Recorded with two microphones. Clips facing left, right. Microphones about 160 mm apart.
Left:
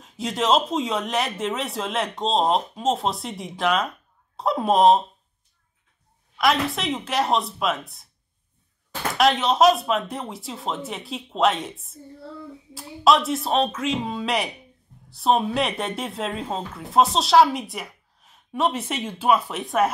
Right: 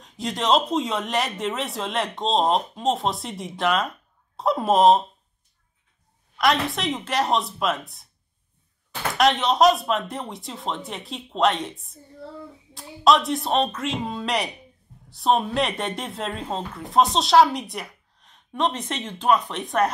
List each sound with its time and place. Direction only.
0.0 s speech: centre (ahead or behind)
6.3 s speech: centre (ahead or behind)
9.1 s speech: centre (ahead or behind)